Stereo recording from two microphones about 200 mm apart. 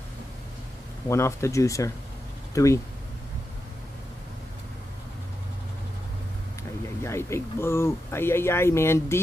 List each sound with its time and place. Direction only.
1.0 s speech: 15° left (ahead or behind)
7.0 s speech: 15° left (ahead or behind)